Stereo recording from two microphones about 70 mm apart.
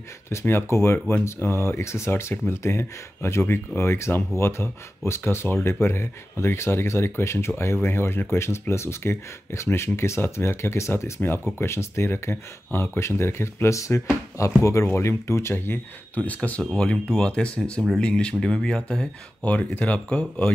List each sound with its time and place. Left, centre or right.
0.3 s speech: left
11.1 s speech: left
16.4 s speech: centre